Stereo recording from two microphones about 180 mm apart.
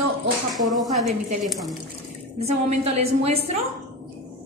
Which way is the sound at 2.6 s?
35° right (ahead or behind).